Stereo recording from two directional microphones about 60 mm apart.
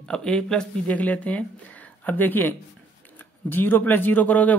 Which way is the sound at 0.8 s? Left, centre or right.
Left.